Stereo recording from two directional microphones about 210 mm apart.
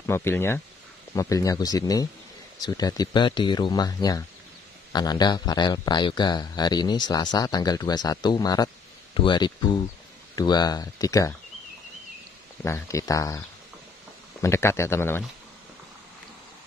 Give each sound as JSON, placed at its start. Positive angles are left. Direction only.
{"t": 0.0, "sound": "speech", "side_deg": 10}
{"t": 12.6, "sound": "speech", "side_deg": 15}
{"t": 14.4, "sound": "speech", "side_deg": 15}